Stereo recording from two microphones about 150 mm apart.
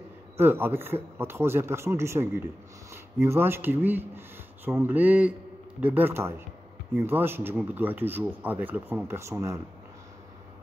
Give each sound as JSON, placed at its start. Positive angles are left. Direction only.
{"t": 0.4, "sound": "speech", "side_deg": -15}